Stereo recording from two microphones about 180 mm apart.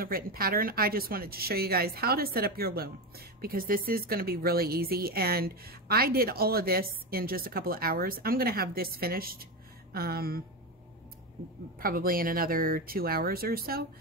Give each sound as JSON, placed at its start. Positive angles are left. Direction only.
{"t": 0.0, "sound": "speech", "side_deg": -55}
{"t": 11.8, "sound": "speech", "side_deg": -55}